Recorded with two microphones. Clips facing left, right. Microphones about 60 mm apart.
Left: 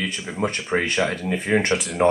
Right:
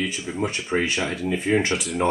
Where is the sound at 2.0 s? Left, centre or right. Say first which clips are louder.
Left 5 dB; left.